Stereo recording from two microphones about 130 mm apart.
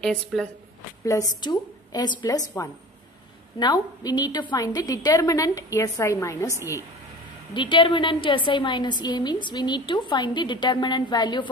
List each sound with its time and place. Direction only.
0.0 s a woman's voice: 5° left (ahead or behind)
1.4 s a woman's voice: 30° left (ahead or behind)
7.5 s a woman's voice: 40° left (ahead or behind)